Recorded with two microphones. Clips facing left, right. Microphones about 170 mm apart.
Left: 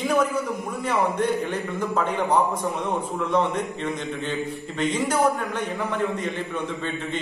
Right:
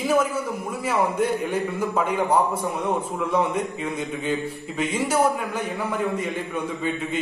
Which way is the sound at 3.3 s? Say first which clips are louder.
Even; 5° right (ahead or behind).